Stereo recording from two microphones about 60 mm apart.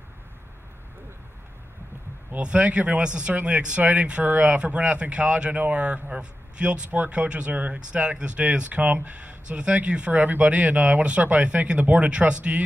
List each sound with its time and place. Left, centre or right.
2.3 s speech: right